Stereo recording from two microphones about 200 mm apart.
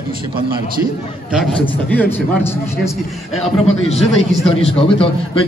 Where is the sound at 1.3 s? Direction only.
5° left (ahead or behind).